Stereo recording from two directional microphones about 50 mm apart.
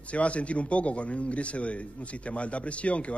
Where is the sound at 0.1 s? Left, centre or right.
Left.